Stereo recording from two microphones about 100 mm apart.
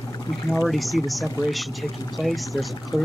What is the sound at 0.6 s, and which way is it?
Speech, centre (ahead or behind).